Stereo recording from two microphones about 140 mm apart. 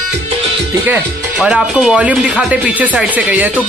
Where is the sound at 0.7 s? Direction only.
10° right (ahead or behind).